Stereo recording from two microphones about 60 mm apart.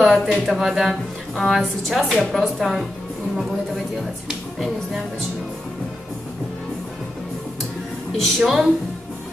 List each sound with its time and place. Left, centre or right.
0.0 s speech: centre
1.3 s a woman's voice: centre
4.3 s speech: centre
8.2 s a woman's voice: centre